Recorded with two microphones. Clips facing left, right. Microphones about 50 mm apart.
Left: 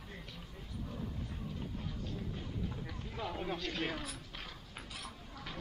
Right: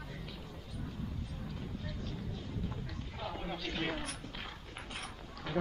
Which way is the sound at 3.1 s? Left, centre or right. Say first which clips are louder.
Left 2 dB; centre.